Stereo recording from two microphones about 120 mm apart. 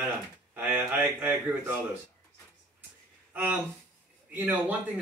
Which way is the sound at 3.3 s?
15° right (ahead or behind).